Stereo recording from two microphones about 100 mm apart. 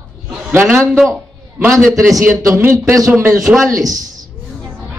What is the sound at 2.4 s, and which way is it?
Speech, 25° right (ahead or behind).